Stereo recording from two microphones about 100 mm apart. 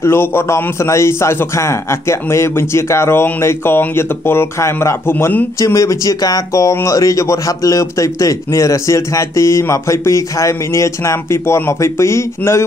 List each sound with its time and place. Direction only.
0.0 s a man's voice: 25° left (ahead or behind)
5.6 s speech: 30° left (ahead or behind)